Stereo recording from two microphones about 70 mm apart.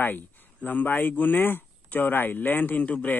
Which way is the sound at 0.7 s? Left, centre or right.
Left.